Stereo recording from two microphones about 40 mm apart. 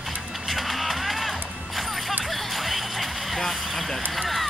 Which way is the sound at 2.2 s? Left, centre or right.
Centre.